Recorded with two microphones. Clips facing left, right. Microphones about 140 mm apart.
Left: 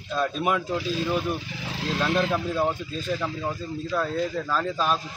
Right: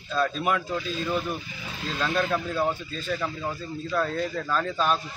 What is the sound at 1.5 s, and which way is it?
Speech, 85° left.